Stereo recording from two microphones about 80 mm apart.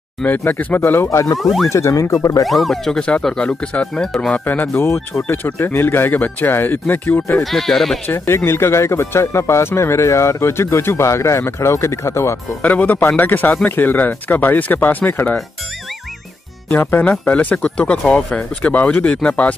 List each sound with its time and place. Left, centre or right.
0.6 s speech: left
1.4 s speech: centre
1.7 s speech: left
2.4 s speech: centre
4.5 s speech: left
7.4 s speech: centre
8.5 s speech: left
12.6 s speech: centre
16.7 s speech: left